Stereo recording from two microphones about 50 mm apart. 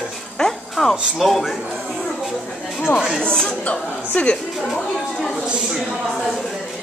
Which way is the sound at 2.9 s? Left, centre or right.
Left.